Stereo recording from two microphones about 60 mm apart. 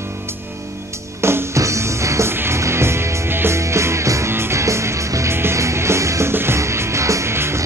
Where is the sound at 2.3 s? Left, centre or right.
Right.